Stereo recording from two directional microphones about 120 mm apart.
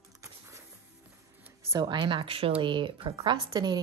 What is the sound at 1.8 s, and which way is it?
Speech, 40° right (ahead or behind).